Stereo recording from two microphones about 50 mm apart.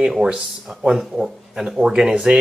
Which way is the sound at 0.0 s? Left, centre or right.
Centre.